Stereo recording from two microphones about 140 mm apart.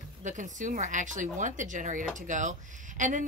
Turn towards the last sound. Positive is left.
turn(degrees=-65)  # may be behind; listen again after turning